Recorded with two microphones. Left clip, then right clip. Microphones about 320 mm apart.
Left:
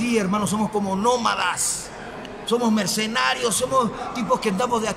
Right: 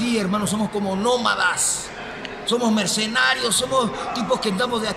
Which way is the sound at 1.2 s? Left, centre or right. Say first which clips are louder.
Right 2 dB; centre.